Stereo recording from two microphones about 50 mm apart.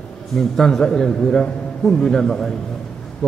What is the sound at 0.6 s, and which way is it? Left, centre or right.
Speech, centre.